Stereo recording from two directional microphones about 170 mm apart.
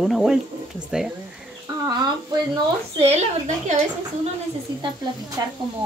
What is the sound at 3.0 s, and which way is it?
Speech, 40° right (ahead or behind).